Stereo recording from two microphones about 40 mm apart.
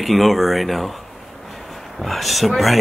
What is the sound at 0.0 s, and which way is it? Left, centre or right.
Speech, centre.